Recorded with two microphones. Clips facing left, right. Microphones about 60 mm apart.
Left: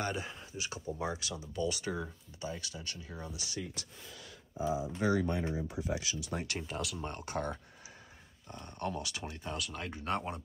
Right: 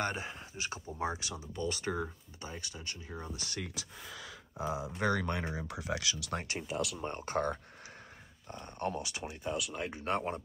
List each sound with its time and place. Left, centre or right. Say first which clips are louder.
0.0 s speech: right 1 dB; right
3.3 s speech: even; right
6.7 s speech: right 7 dB; centre
7.2 s speech: right 4 dB; right
8.5 s speech: right 2 dB; right
9.4 s speech: right 5 dB; centre
9.8 s speech: right 2 dB; right